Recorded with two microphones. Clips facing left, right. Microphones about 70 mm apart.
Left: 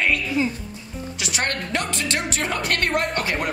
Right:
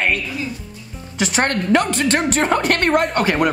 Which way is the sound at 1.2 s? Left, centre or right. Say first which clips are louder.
Right 8 dB; right.